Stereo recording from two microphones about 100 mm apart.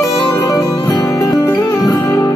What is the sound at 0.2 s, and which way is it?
Music, 35° left (ahead or behind).